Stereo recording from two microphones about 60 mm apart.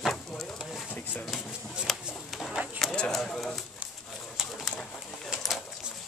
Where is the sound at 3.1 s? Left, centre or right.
Centre.